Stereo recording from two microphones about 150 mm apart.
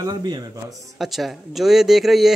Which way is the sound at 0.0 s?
25° right (ahead or behind).